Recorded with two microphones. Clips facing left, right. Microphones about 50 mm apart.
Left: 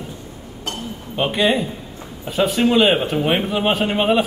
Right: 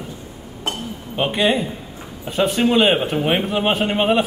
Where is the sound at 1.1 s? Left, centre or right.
Centre.